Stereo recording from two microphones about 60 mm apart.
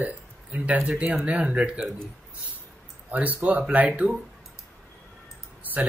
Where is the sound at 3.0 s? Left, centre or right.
Right.